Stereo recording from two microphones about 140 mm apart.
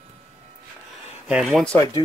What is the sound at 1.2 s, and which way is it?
Speech, 5° right (ahead or behind).